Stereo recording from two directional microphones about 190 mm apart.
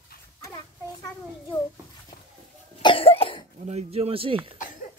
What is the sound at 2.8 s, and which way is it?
Cough, 25° left (ahead or behind).